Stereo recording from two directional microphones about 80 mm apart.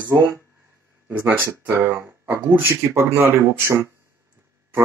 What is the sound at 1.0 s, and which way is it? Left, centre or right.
Speech, right.